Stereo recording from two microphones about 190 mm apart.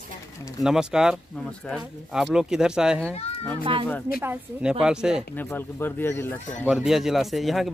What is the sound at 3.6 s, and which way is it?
Speech, 25° right (ahead or behind).